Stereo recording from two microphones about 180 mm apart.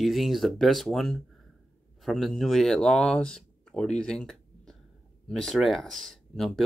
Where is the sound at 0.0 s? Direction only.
Centre (ahead or behind).